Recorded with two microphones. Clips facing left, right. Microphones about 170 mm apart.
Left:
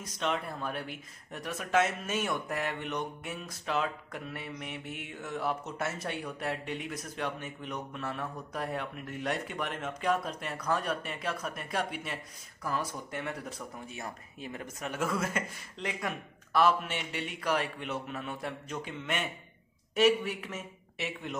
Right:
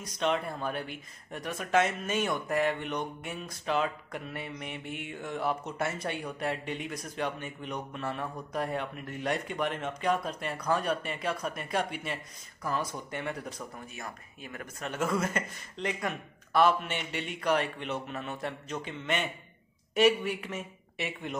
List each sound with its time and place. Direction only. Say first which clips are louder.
0.0 s speech: right 3 dB; centre (ahead or behind)
13.9 s speech: left 1 dB; 25° left (ahead or behind)
14.9 s speech: right 2 dB; 5° left (ahead or behind)